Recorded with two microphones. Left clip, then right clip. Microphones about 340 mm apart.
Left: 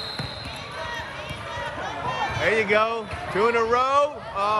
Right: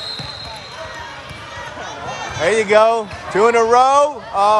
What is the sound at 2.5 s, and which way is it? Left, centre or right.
Speech, centre.